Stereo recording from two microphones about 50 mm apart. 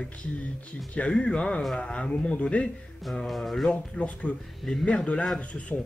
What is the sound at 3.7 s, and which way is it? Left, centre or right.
Speech, left.